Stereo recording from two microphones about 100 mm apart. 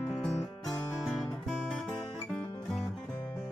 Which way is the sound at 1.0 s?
Centre (ahead or behind).